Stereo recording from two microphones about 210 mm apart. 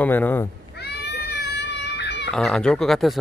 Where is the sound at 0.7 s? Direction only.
50° left (ahead or behind).